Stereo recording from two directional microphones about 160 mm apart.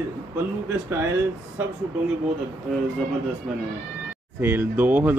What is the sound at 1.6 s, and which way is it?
Speech, 15° right (ahead or behind).